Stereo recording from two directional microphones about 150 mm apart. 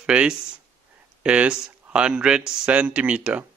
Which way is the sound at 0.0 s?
5° right (ahead or behind).